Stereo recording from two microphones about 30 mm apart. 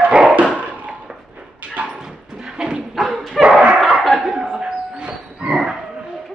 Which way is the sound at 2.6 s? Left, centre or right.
Centre.